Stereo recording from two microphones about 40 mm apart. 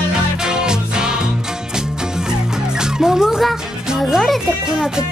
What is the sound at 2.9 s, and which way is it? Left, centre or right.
Music, centre.